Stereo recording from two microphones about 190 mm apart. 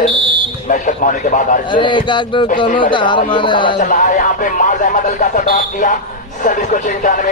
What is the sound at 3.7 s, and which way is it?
Speech, 45° left (ahead or behind).